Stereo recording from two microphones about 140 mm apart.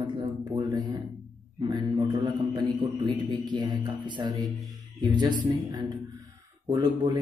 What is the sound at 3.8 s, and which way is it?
Speech, 35° right (ahead or behind).